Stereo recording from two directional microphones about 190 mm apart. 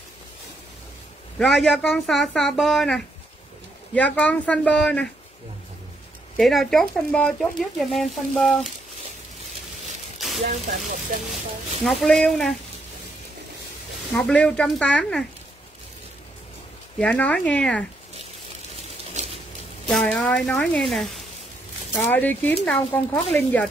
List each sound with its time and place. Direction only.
1.4 s speech: centre (ahead or behind)
6.3 s speech: centre (ahead or behind)
9.8 s a sound: centre (ahead or behind)
11.8 s speech: centre (ahead or behind)
14.1 s speech: 5° left (ahead or behind)
17.0 s speech: 5° left (ahead or behind)
19.1 s a sound: 30° right (ahead or behind)
19.9 s speech: 5° left (ahead or behind)